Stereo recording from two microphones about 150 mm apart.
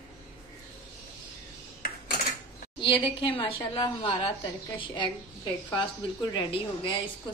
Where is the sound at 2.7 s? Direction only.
35° left (ahead or behind).